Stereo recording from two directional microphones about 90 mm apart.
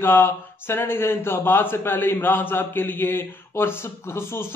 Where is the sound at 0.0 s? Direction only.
25° left (ahead or behind).